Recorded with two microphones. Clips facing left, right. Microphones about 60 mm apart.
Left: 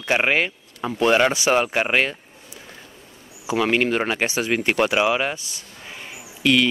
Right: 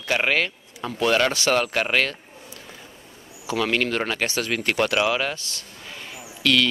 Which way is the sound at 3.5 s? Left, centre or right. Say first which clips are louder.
Left 3 dB; centre.